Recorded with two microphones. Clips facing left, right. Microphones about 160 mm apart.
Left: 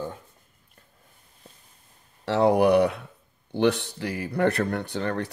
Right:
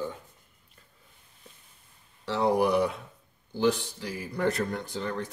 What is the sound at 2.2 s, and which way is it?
Speech, 70° left (ahead or behind).